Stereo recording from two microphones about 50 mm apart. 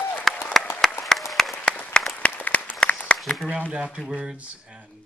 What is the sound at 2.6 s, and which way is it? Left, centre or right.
Applause, left.